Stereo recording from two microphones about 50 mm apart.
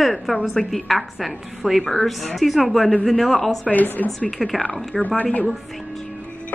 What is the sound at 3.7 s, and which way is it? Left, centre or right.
Speech, left.